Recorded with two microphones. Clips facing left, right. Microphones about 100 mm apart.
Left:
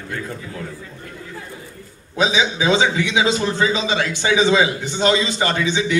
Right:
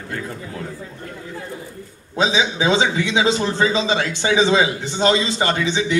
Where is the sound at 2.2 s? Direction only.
30° right (ahead or behind).